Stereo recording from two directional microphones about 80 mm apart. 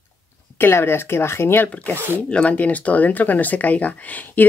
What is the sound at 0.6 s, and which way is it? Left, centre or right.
Speech, left.